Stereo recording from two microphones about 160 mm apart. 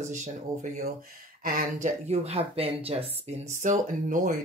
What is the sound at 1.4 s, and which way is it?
Speech, 60° right (ahead or behind).